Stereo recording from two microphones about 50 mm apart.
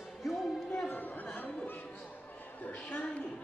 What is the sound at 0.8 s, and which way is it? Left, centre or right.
Chatter, left.